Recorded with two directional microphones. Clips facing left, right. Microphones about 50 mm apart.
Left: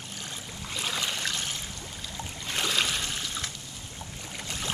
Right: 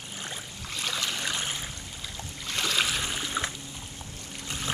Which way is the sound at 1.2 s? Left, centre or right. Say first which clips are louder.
Right 1 dB; centre.